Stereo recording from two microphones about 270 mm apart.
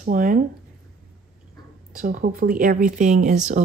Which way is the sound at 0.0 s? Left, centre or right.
Right.